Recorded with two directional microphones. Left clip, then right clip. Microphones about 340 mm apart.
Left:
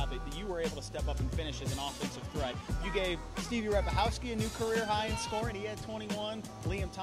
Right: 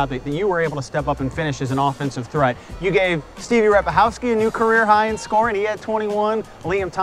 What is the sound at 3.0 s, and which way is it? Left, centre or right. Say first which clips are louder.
Speech: right 15 dB; right.